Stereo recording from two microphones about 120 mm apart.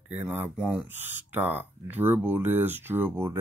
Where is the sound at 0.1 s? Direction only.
15° right (ahead or behind).